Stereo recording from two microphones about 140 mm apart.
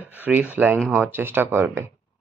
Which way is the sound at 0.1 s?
10° right (ahead or behind).